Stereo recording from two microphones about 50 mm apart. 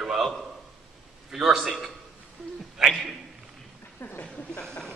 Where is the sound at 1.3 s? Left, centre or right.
Centre.